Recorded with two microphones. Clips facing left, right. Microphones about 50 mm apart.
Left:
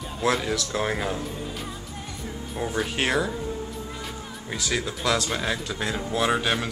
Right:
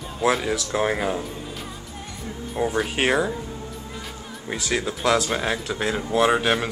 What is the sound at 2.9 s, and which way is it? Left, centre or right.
Speech, centre.